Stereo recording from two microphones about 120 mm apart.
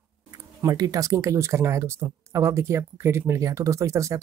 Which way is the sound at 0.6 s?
30° right (ahead or behind).